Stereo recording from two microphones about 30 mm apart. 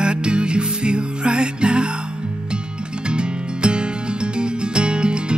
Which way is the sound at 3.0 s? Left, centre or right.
Right.